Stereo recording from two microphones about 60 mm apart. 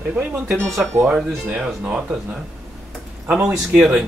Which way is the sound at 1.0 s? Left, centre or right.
Right.